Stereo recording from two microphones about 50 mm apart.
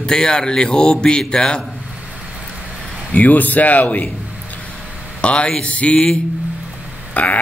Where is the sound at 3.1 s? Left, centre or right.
Left.